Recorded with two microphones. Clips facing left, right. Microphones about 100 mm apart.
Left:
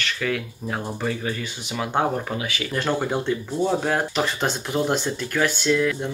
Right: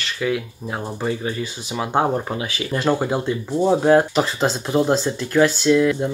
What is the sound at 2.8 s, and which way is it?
Speech, 10° right (ahead or behind).